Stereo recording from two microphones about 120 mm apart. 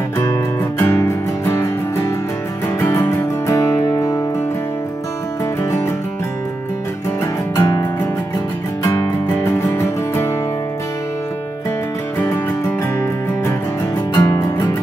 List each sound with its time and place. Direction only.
0.2 s music: 25° left (ahead or behind)
7.5 s music: 30° left (ahead or behind)
8.9 s music: 20° left (ahead or behind)
14.1 s music: 30° left (ahead or behind)